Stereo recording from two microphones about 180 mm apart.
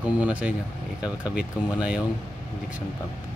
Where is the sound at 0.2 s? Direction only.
10° right (ahead or behind).